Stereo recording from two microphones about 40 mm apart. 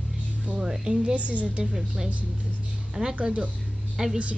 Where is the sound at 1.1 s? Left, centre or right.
Right.